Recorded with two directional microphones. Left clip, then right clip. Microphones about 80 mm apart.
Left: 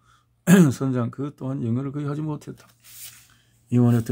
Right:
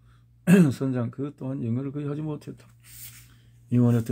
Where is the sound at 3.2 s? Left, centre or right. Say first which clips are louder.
Even; left.